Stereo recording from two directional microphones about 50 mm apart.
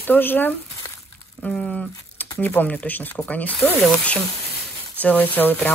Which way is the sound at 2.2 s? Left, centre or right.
Left.